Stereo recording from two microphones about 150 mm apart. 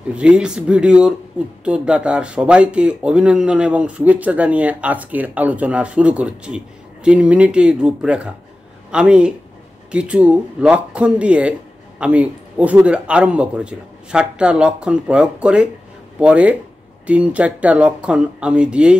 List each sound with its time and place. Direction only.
0.1 s speech: 5° right (ahead or behind)